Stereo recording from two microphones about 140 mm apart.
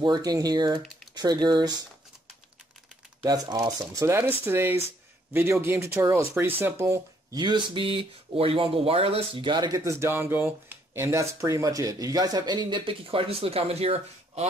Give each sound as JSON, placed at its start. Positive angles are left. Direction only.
{"t": 0.0, "sound": "speech", "side_deg": -30}
{"t": 3.2, "sound": "speech", "side_deg": -30}
{"t": 7.3, "sound": "speech", "side_deg": -30}